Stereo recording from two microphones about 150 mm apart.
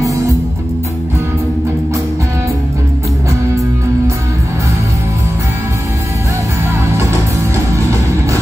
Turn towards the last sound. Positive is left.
turn(degrees=-20)  # may be behind; listen again after turning